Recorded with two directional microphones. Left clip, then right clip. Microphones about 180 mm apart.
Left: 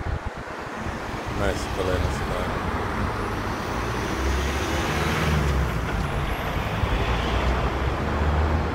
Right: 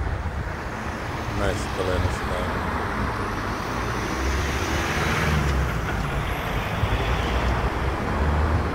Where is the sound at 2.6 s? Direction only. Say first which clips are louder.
Right 1 dB; 55° left (ahead or behind).